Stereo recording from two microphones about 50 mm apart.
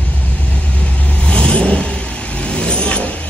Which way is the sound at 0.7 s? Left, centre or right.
Left.